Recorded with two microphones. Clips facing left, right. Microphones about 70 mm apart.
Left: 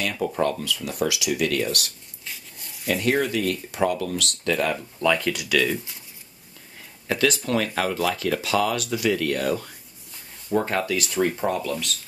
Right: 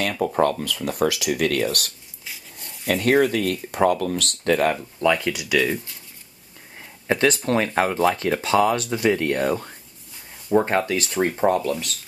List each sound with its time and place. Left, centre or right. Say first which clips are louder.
0.2 s speech: right 4 dB; right
2.2 s a sound: right 1 dB; centre
2.9 s speech: right 4 dB; right
5.0 s speech: right 2 dB; centre
7.1 s speech: right 3 dB; right